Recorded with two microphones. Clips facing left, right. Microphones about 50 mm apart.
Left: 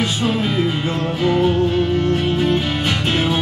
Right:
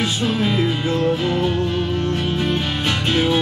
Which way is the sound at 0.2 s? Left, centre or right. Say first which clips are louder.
Even; centre.